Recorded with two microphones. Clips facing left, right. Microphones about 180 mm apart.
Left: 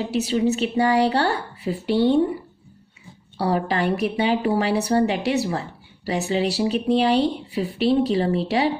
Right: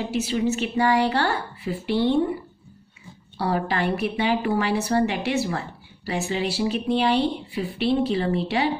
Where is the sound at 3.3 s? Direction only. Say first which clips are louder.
Left 2 dB; 35° left (ahead or behind).